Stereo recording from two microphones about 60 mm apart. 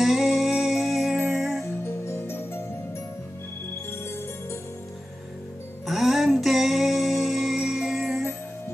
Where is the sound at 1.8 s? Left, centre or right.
Left.